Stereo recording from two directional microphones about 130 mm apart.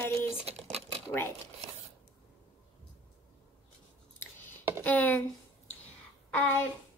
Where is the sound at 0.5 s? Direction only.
55° right (ahead or behind).